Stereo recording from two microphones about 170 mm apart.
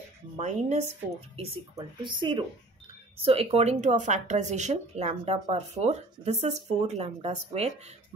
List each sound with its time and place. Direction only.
0.4 s speech: 40° right (ahead or behind)
1.8 s speech: 30° right (ahead or behind)